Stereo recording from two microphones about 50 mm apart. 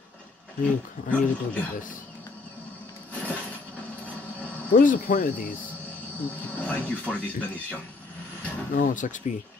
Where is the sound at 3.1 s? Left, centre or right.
Left.